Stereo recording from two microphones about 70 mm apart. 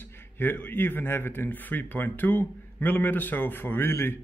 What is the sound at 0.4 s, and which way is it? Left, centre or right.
Speech, left.